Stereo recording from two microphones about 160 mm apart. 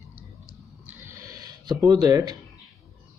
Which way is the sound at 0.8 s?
15° right (ahead or behind).